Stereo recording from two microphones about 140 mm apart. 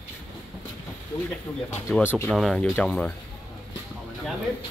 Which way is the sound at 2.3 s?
5° left (ahead or behind).